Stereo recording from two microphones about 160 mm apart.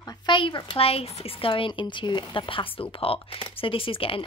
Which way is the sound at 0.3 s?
30° left (ahead or behind).